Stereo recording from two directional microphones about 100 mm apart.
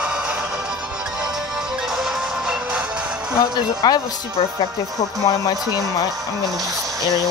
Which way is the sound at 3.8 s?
40° left (ahead or behind).